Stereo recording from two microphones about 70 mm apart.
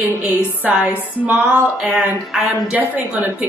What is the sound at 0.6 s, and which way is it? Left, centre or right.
Music, right.